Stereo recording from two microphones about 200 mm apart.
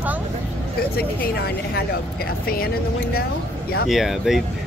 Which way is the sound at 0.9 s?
50° left (ahead or behind).